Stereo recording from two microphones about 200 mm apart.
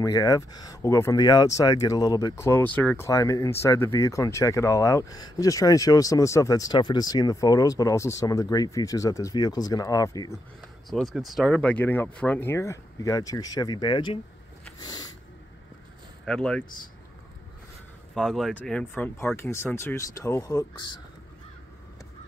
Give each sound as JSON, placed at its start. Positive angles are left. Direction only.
{"t": 0.0, "sound": "speech", "side_deg": 15}
{"t": 10.9, "sound": "speech", "side_deg": 0}
{"t": 14.8, "sound": "vehicle", "side_deg": 20}
{"t": 16.3, "sound": "speech", "side_deg": 5}
{"t": 18.1, "sound": "speech", "side_deg": 0}